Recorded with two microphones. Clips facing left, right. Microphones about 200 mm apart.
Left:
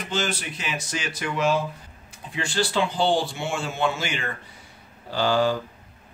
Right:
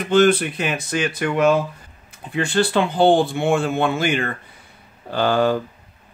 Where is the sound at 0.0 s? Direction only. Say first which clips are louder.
Right 13 dB; 55° right (ahead or behind).